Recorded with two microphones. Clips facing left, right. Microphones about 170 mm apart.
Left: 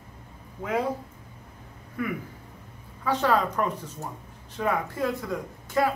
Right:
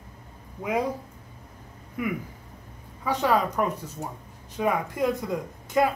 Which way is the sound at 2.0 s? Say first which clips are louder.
Right 1 dB; 15° right (ahead or behind).